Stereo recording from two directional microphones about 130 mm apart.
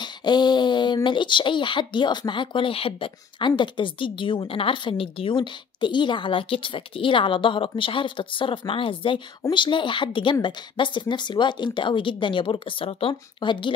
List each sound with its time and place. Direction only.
0.0 s speech: 35° left (ahead or behind)